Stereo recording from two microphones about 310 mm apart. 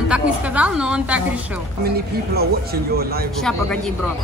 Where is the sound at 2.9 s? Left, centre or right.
Right.